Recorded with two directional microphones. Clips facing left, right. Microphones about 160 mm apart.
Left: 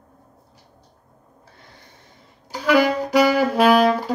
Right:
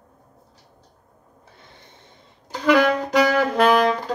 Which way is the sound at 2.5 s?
5° left (ahead or behind).